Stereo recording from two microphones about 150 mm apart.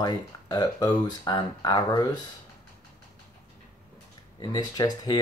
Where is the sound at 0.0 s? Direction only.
25° left (ahead or behind).